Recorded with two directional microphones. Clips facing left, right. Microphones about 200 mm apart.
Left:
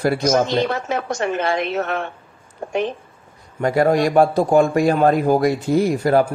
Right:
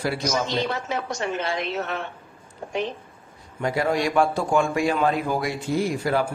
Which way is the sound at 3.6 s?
45° left (ahead or behind).